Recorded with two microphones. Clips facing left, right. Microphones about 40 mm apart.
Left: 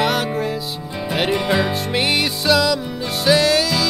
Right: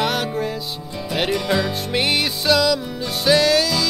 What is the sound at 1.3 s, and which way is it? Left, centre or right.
Music, centre.